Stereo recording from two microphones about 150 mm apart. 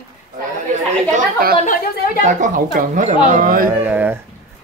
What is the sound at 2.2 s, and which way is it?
Speech, 60° right (ahead or behind).